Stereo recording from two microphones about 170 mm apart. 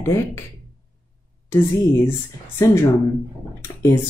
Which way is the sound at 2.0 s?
15° left (ahead or behind).